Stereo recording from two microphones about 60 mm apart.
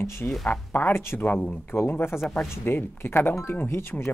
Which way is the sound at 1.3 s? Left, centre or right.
Left.